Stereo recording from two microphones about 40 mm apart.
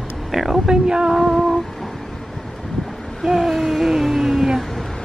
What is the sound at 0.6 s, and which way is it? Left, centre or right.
Speech, centre.